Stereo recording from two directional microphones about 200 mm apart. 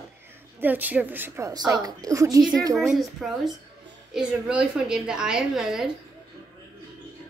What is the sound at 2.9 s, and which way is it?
A woman's voice, centre (ahead or behind).